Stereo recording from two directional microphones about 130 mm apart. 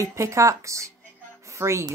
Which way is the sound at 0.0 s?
25° right (ahead or behind).